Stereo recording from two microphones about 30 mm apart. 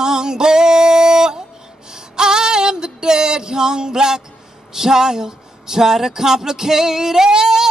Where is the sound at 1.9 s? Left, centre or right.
Right.